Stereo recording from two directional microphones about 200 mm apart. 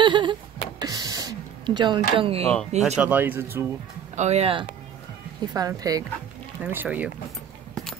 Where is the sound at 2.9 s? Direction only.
5° right (ahead or behind).